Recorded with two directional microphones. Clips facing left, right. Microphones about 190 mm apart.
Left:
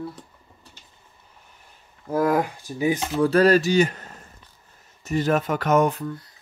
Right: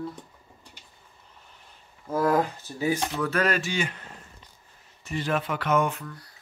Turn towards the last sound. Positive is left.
turn(degrees=25)  # may be behind; listen again after turning